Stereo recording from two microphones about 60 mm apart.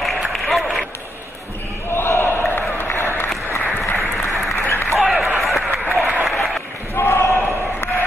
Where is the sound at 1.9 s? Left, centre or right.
Left.